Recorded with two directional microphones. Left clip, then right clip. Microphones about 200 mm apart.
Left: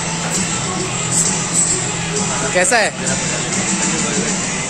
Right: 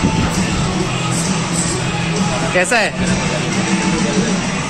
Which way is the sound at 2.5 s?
5° left (ahead or behind).